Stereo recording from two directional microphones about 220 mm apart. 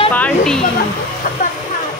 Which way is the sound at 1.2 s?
40° left (ahead or behind).